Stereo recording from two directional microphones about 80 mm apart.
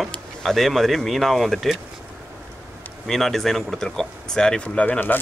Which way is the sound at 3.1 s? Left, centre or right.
Centre.